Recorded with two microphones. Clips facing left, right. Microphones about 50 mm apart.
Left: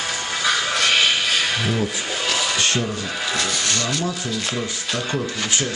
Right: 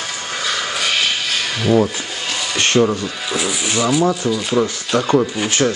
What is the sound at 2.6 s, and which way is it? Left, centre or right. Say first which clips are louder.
Rub: right 7 dB; right.